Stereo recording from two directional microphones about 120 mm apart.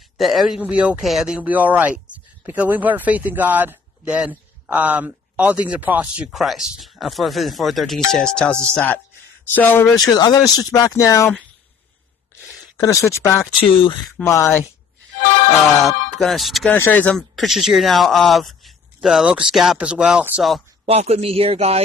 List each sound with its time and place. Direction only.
0.2 s speech: centre (ahead or behind); by 9.9 s 15° left (ahead or behind)
10.1 s speech: 35° left (ahead or behind)
12.7 s speech: 25° left (ahead or behind)
13.5 s speech: 45° left (ahead or behind)
14.2 s speech: 25° left (ahead or behind)
16.2 s speech: centre (ahead or behind)
16.6 s speech: 15° left (ahead or behind)
17.4 s speech: centre (ahead or behind)
20.8 s a man's voice: 55° right (ahead or behind)